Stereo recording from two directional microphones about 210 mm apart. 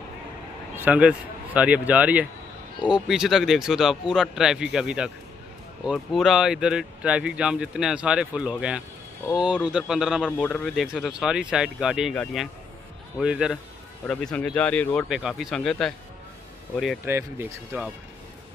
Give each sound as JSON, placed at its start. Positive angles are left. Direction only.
{"t": 0.7, "sound": "speech", "side_deg": -5}
{"t": 14.0, "sound": "speech", "side_deg": 5}